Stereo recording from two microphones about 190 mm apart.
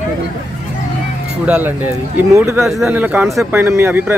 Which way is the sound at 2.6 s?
Centre (ahead or behind).